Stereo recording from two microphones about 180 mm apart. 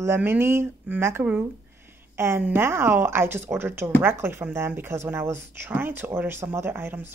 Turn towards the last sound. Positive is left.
turn(degrees=-10)  # may be behind; listen again after turning